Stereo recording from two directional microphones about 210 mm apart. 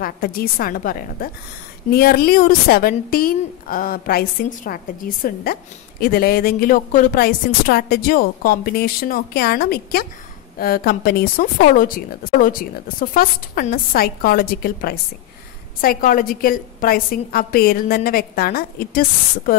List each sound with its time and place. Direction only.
0.0 s a woman's voice: 45° left (ahead or behind)